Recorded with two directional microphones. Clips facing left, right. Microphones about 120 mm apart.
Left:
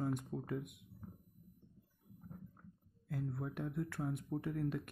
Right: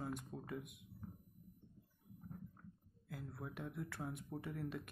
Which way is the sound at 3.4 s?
45° left (ahead or behind).